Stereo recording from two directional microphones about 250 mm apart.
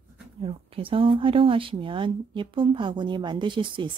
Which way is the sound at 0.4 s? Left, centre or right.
Right.